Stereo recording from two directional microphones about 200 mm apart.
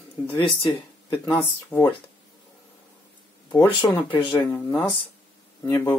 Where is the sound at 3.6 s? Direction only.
10° left (ahead or behind).